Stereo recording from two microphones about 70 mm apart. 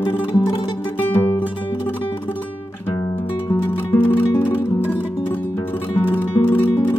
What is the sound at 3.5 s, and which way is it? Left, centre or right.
Music, left.